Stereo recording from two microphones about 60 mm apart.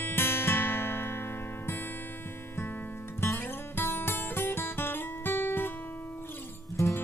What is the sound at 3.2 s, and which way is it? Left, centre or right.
Music, left.